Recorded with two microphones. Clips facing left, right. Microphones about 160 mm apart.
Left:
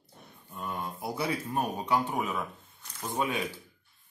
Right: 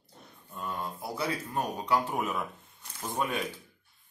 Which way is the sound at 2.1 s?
Centre (ahead or behind).